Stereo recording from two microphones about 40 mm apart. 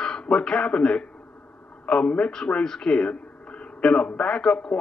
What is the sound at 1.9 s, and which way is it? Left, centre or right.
A man's voice, left.